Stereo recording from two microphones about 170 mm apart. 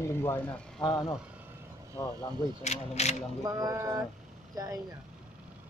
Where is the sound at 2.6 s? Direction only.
40° left (ahead or behind).